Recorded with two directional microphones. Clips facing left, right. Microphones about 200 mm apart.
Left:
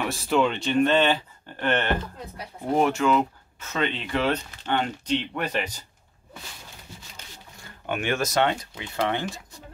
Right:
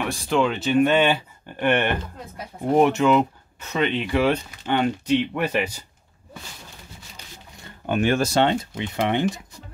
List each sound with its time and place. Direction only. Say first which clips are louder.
0.0 s speech: right 1 dB; centre (ahead or behind)
7.9 s speech: right 5 dB; 35° right (ahead or behind); by 9.4 s 20° right (ahead or behind)